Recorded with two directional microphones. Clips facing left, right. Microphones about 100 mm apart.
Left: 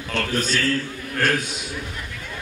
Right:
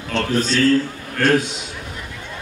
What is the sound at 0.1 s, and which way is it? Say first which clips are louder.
Speech: right 5 dB; 25° right (ahead or behind).